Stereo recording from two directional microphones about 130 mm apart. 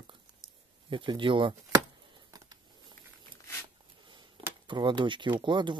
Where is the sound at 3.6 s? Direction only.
35° right (ahead or behind).